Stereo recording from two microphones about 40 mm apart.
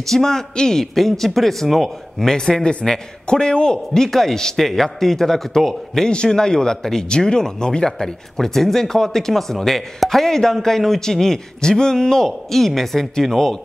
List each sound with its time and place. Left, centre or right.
0.0 s speech: centre
2.3 s speech: centre
6.0 s speech: centre